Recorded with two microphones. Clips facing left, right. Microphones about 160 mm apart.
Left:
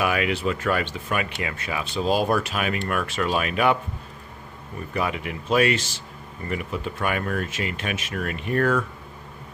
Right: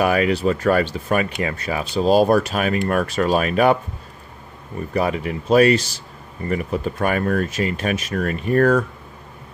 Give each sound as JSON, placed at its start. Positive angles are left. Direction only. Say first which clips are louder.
{"t": 0.0, "sound": "speech", "louder": "right 6 dB", "side_deg": -40}
{"t": 4.9, "sound": "speech", "louder": "right 6 dB", "side_deg": -35}